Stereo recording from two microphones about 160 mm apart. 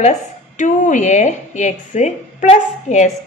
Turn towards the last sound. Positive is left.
turn(degrees=45)  # may be behind; listen again after turning